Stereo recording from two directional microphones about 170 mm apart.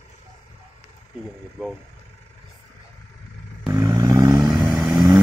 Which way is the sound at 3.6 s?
15° right (ahead or behind).